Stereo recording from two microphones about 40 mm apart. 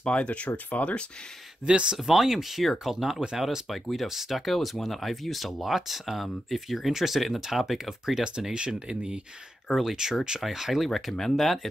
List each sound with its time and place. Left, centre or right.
0.0 s speech: left
1.7 s speech: right
2.0 s speech: centre
8.2 s speech: centre
9.8 s speech: centre